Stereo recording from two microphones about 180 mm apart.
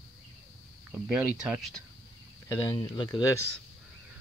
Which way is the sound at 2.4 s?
20° left (ahead or behind).